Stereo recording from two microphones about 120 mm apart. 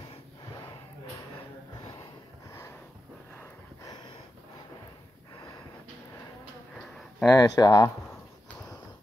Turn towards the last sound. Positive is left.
turn(degrees=30)  # may be behind; listen again after turning